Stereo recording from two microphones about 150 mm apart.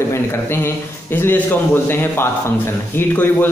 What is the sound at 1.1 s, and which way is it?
Speech, 15° left (ahead or behind).